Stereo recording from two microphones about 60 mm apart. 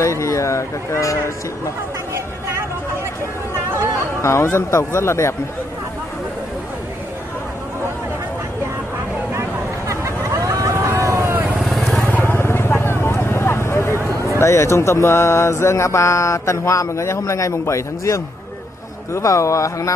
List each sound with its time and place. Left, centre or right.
0.0 s speech: left
4.2 s speech: left
9.3 s vehicle: right
11.6 s vehicle: centre
12.0 s vehicle: left
13.9 s a sound: right
14.4 s speech: left